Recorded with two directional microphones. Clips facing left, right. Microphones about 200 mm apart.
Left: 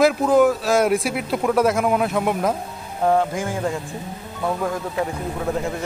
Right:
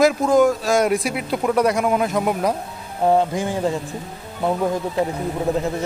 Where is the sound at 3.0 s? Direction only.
15° right (ahead or behind).